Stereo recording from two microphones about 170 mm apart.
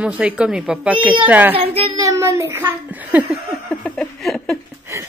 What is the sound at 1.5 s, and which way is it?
Speech, 35° right (ahead or behind).